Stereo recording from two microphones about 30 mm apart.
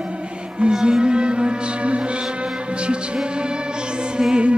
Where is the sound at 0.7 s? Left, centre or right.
Centre.